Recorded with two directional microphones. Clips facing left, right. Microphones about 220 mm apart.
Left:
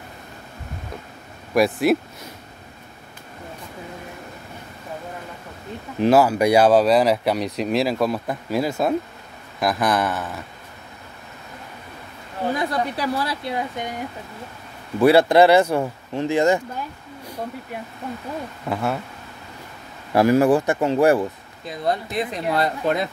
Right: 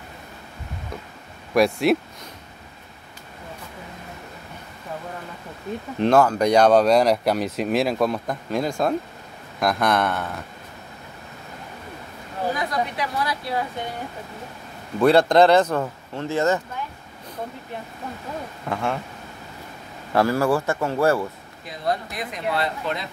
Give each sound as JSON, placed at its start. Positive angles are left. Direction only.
{"t": 1.5, "sound": "speech", "side_deg": 0}
{"t": 5.9, "sound": "speech", "side_deg": 5}
{"t": 12.5, "sound": "a woman's voice", "side_deg": 30}
{"t": 15.0, "sound": "speech", "side_deg": 5}
{"t": 18.7, "sound": "speech", "side_deg": 5}
{"t": 20.2, "sound": "a woman's voice", "side_deg": 20}
{"t": 22.5, "sound": "speech", "side_deg": 45}